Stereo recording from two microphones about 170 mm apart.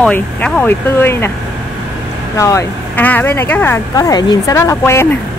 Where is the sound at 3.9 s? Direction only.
25° left (ahead or behind).